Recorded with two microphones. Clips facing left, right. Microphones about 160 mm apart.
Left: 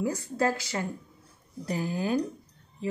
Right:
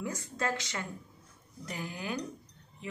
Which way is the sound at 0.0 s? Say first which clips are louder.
Left 8 dB; 30° left (ahead or behind).